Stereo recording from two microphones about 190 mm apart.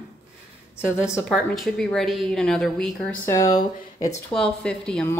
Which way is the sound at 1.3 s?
Centre (ahead or behind).